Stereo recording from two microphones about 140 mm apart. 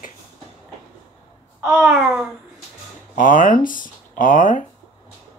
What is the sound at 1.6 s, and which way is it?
Babbling, 5° right (ahead or behind).